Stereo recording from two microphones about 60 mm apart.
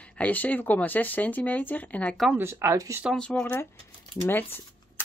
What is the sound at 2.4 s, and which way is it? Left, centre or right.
Speech, right.